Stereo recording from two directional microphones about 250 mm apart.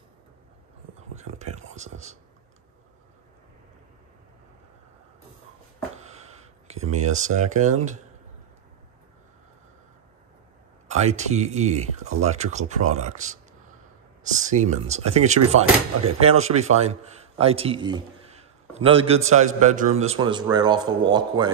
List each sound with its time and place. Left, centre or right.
1.1 s whispering: right
6.7 s a man's voice: right
10.9 s a man's voice: right